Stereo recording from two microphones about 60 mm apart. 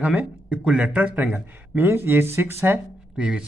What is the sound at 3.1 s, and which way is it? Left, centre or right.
Speech, centre.